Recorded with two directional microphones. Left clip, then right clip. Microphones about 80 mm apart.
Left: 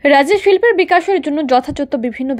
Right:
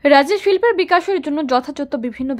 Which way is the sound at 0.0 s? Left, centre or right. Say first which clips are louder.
Left 2 dB; centre.